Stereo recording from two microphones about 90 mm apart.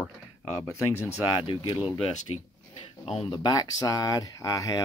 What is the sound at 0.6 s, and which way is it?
Speech, 30° left (ahead or behind).